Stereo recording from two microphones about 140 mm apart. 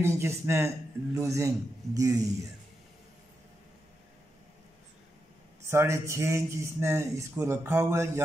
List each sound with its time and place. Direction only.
0.0 s a man's voice: 20° right (ahead or behind)
5.7 s a man's voice: 20° right (ahead or behind)